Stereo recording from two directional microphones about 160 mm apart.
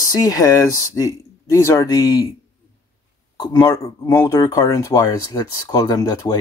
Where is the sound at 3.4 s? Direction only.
25° left (ahead or behind).